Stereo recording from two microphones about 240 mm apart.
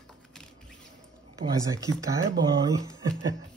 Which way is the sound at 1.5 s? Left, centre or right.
Centre.